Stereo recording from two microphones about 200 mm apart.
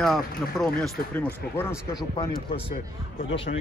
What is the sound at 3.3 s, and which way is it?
Speech, 25° left (ahead or behind).